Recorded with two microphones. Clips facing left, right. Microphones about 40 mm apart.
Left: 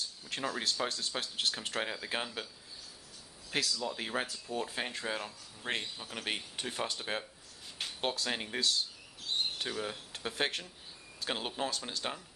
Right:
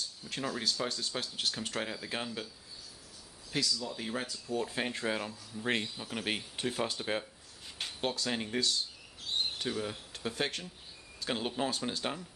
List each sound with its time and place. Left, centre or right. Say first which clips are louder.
0.3 s speech: even; centre
3.5 s speech: even; left
4.6 s speech: right 3 dB; centre
11.7 s speech: right 3 dB; centre